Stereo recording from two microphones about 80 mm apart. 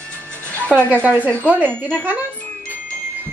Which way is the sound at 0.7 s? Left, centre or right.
Centre.